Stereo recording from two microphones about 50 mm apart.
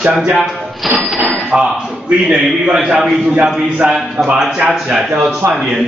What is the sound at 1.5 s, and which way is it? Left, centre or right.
A man's voice, right.